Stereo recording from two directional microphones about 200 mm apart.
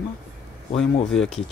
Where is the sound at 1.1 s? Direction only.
5° left (ahead or behind).